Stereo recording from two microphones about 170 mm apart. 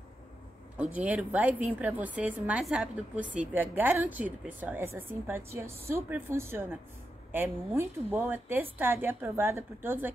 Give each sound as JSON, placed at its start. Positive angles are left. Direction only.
{"t": 0.7, "sound": "a woman's voice", "side_deg": -10}